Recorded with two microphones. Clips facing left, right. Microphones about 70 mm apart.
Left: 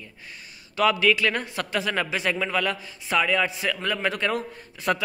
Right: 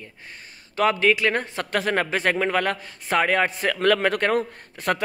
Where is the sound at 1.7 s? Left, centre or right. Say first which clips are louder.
Right 4 dB; right.